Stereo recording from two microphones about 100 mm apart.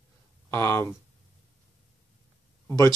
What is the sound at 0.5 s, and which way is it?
Speech, 30° left (ahead or behind).